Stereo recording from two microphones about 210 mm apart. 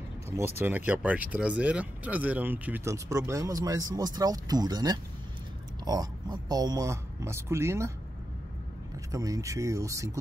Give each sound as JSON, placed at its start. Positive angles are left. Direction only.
{"t": 0.6, "sound": "speech", "side_deg": -10}
{"t": 9.1, "sound": "speech", "side_deg": -15}